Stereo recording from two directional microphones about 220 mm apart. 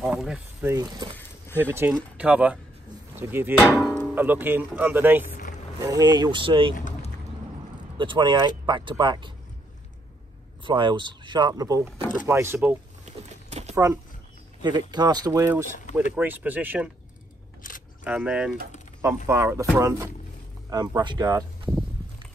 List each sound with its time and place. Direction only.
0.0 s speech: centre (ahead or behind); by 6.7 s 25° right (ahead or behind)
6.7 s a sound: 35° left (ahead or behind)
8.0 s speech: 20° right (ahead or behind)
10.6 s speech: 20° right (ahead or behind)
13.5 s a sound: 30° right (ahead or behind)
14.6 s speech: 20° right (ahead or behind)
17.6 s single-lens reflex camera: 40° left (ahead or behind)
18.0 s speech: 5° right (ahead or behind)